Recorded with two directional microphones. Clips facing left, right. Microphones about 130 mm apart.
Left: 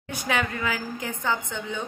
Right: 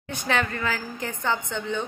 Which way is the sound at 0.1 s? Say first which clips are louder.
Right 1 dB; 10° left (ahead or behind).